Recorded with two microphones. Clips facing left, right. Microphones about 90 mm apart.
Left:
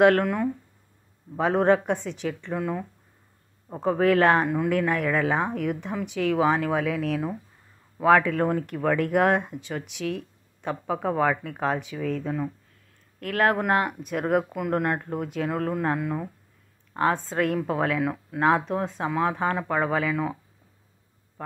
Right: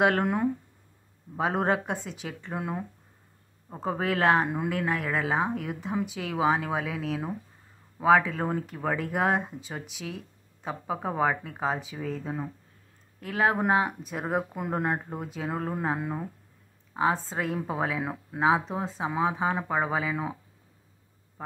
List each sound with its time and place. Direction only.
0.2 s speech: 20° right (ahead or behind)
1.4 s speech: 10° right (ahead or behind)
3.8 s speech: 5° right (ahead or behind)
14.3 s speech: 25° right (ahead or behind)
18.0 s speech: 20° right (ahead or behind)
18.4 s speech: 5° right (ahead or behind)